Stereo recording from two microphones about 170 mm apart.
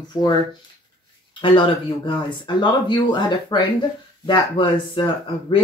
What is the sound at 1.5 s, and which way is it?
Speech, 30° left (ahead or behind).